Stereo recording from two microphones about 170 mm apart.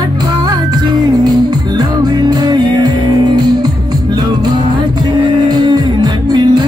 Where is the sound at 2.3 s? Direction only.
25° right (ahead or behind).